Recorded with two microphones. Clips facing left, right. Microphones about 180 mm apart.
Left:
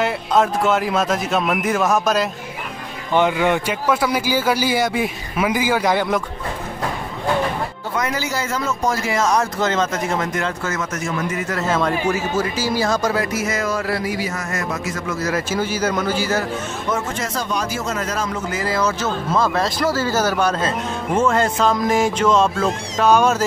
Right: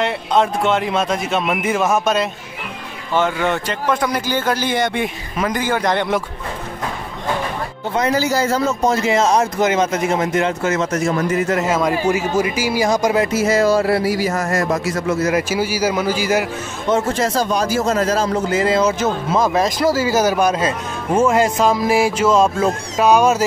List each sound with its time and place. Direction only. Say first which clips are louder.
0.0 s a man's voice: right 1 dB; centre (ahead or behind)
3.1 s speech: left 1 dB; 15° left (ahead or behind)
7.9 s a man's voice: right 7 dB; 30° right (ahead or behind)
11.5 s speech: right 3 dB; 10° right (ahead or behind); by 14.1 s 30° right (ahead or behind)
14.1 s a man's voice: right 6 dB; 45° right (ahead or behind)
15.2 s speech: right 3 dB; 15° right (ahead or behind)
16.9 s speech: right 8 dB; 35° right (ahead or behind); by 23.4 s 10° right (ahead or behind)